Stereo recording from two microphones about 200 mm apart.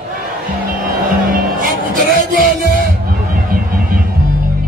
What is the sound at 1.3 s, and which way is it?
Music, 45° right (ahead or behind).